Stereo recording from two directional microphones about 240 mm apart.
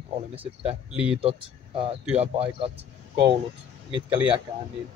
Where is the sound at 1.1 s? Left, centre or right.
Right.